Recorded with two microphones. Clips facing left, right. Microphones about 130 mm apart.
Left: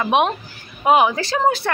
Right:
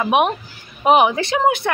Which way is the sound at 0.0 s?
15° right (ahead or behind).